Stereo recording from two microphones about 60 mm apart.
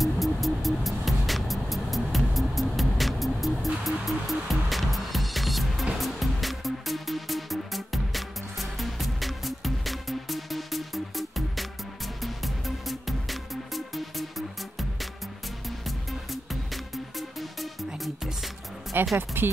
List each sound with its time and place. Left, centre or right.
0.0 s music: centre
16.1 s music: centre
19.1 s speech: right